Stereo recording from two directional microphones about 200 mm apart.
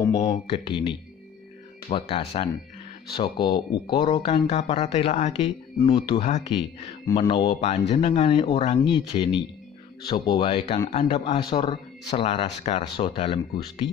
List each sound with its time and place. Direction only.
0.2 s speech: 30° left (ahead or behind)
6.2 s speech: 35° left (ahead or behind)